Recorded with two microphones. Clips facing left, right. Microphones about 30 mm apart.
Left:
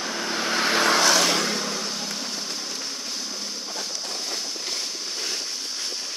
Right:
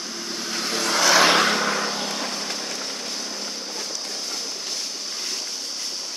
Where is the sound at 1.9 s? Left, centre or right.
Right.